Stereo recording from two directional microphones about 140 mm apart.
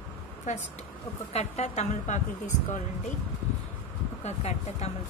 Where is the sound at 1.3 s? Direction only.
50° left (ahead or behind).